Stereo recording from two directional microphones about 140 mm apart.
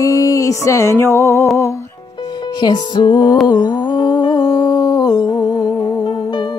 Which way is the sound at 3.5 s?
30° left (ahead or behind).